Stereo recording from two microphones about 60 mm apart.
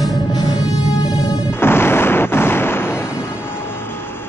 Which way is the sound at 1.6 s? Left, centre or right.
Left.